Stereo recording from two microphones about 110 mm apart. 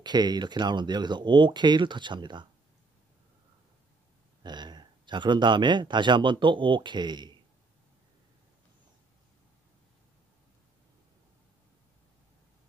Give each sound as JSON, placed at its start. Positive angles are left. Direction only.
{"t": 0.0, "sound": "speech", "side_deg": -40}
{"t": 4.4, "sound": "speech", "side_deg": -40}